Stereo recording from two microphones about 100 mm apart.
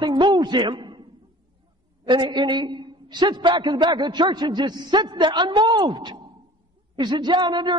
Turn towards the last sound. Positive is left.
turn(degrees=-50)  # may be behind; listen again after turning